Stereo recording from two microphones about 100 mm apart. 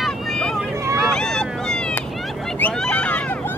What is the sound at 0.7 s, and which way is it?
Vehicle, 25° right (ahead or behind).